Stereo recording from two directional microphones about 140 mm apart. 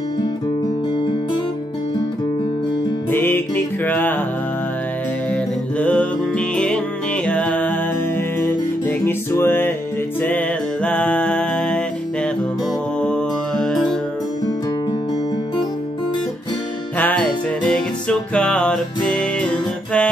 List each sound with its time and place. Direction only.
3.1 s music: 15° left (ahead or behind)
5.3 s music: 10° left (ahead or behind)
13.0 s music: 5° left (ahead or behind)
17.0 s music: 5° left (ahead or behind)